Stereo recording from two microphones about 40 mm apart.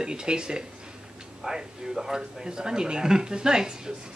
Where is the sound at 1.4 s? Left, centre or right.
Centre.